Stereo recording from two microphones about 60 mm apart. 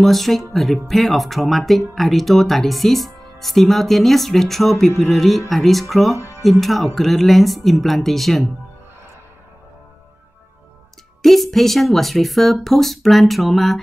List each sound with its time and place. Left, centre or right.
0.0 s speech: centre
6.1 s music: left
6.4 s speech: centre
11.2 s speech: centre